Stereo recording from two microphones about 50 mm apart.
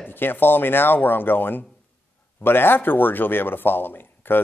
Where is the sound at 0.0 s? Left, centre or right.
Left.